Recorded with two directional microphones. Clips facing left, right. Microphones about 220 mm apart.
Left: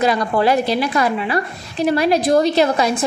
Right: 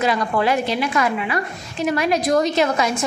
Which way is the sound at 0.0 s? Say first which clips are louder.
Left 3 dB; 35° left (ahead or behind).